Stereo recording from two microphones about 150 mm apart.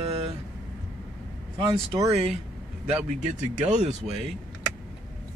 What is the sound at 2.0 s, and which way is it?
Speech, 45° right (ahead or behind).